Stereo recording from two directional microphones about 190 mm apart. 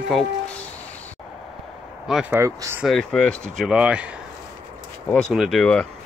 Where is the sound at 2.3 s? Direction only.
15° right (ahead or behind).